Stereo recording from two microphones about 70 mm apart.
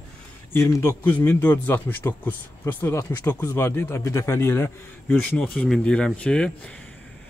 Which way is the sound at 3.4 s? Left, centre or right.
Left.